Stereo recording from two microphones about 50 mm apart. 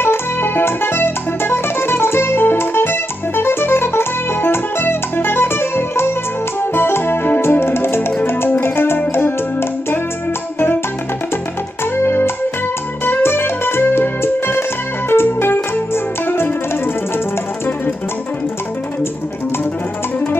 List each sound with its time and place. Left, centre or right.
0.0 s music: left
12.0 s music: left